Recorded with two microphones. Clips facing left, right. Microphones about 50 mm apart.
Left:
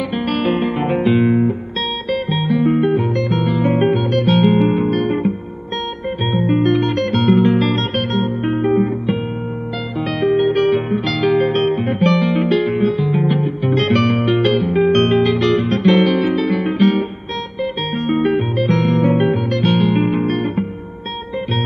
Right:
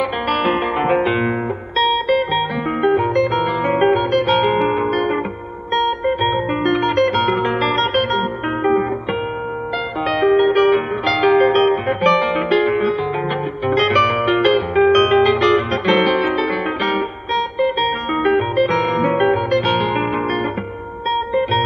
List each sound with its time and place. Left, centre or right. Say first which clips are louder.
0.3 s music: even; right
6.0 s guitar: right 1 dB; right
10.2 s music: right 1 dB; right
18.1 s music: even; right